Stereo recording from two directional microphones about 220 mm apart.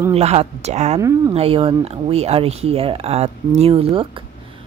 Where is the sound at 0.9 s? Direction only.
15° right (ahead or behind).